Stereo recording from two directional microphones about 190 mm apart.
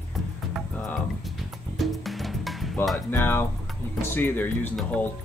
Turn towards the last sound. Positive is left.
turn(degrees=5)  # may be behind; listen again after turning